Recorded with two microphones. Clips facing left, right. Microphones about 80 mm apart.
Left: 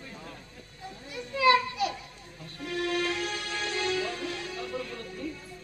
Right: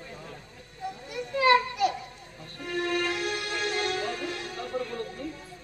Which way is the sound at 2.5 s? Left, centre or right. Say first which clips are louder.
Right 1 dB; right.